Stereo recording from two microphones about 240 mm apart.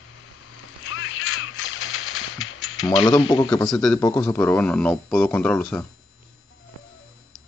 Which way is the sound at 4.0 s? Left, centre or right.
Centre.